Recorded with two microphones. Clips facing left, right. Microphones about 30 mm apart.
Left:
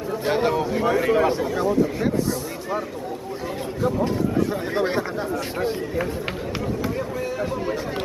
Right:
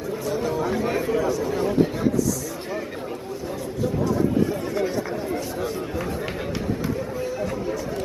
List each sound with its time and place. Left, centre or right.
0.3 s speech: left
4.7 s speech: left